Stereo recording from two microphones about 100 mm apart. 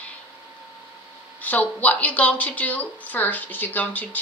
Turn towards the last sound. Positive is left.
turn(degrees=15)  # may be behind; listen again after turning